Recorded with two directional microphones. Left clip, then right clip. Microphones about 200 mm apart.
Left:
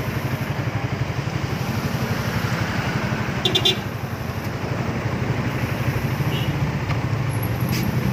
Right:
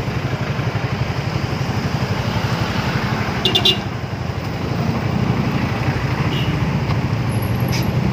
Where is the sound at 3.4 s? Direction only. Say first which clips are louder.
Right 4 dB; centre (ahead or behind).